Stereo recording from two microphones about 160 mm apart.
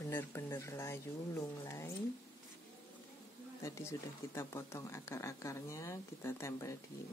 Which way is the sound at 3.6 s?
20° left (ahead or behind).